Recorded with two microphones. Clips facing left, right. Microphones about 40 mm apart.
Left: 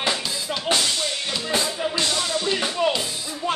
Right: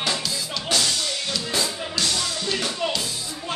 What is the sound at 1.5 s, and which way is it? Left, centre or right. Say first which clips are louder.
Speech: left 5 dB; left.